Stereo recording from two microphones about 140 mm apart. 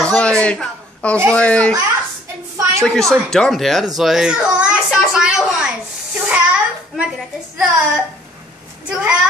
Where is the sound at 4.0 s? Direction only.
5° right (ahead or behind).